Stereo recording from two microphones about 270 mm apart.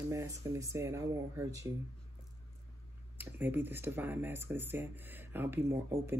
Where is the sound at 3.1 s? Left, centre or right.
Centre.